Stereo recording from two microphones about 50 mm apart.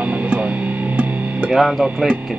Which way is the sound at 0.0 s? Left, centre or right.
Right.